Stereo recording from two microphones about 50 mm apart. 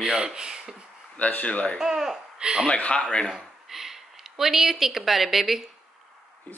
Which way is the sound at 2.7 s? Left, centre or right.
Left.